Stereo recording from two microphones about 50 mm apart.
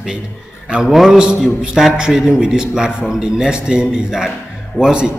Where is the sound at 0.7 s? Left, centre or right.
Centre.